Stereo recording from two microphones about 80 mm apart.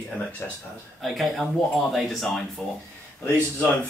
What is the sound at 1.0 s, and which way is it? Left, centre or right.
Speech, centre.